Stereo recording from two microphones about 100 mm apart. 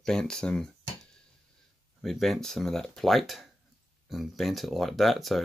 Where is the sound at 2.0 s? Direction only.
Centre (ahead or behind).